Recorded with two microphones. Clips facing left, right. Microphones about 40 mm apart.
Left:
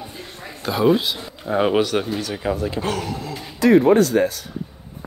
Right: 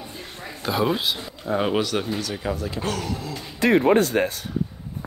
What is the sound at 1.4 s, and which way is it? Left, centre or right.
Speech, left.